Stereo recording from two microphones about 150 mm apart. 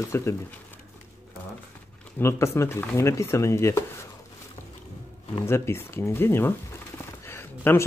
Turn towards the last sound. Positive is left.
turn(degrees=15)  # may be behind; listen again after turning